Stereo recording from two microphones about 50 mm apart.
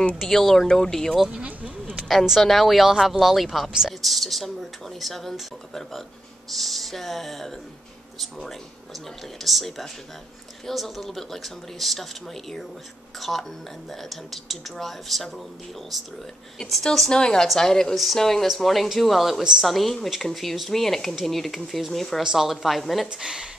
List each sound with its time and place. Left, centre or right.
0.1 s speech: centre
1.3 s a sound: right
2.0 s speech: centre
17.1 s speech: centre
22.2 s speech: centre
23.0 s speech: centre